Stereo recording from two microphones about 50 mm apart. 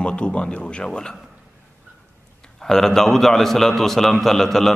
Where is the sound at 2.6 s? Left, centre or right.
Centre.